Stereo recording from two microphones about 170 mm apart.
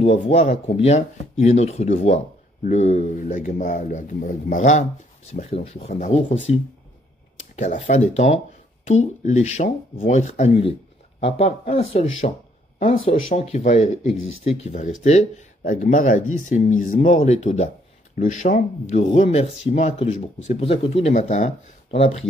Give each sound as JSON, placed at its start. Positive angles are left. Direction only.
{"t": 0.3, "sound": "speech", "side_deg": 35}
{"t": 7.5, "sound": "speech", "side_deg": 40}
{"t": 12.7, "sound": "speech", "side_deg": 50}